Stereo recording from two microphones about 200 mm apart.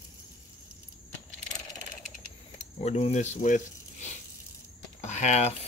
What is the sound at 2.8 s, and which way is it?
Speech, 30° left (ahead or behind).